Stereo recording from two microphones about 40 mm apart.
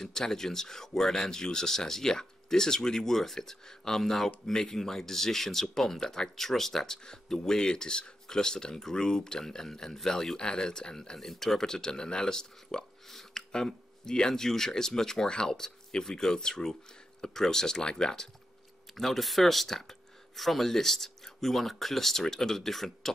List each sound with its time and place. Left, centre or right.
0.0 s speech: centre
18.9 s speech: centre